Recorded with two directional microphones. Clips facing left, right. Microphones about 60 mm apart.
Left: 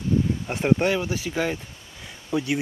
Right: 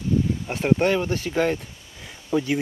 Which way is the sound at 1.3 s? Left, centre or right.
Centre.